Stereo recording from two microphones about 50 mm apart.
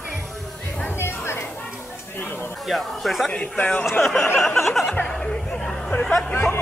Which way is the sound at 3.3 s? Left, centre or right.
Left.